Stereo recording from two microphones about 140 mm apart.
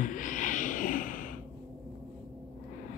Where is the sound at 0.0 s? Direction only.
70° left (ahead or behind).